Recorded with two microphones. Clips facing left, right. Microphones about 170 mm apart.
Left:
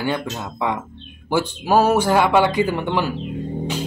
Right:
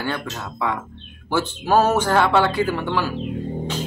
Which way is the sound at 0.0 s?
15° left (ahead or behind).